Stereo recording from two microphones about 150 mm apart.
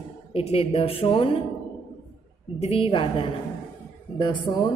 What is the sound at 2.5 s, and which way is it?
Speech, 40° left (ahead or behind).